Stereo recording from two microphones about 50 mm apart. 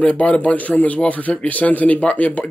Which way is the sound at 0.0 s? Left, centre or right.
Left.